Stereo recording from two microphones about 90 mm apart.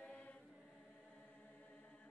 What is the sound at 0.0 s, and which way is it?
Chant, 10° left (ahead or behind).